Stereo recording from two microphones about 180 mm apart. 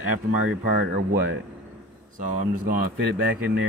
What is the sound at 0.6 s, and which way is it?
Speech, 70° right (ahead or behind).